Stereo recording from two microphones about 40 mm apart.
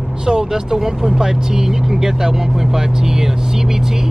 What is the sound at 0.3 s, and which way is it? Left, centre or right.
Speech, centre.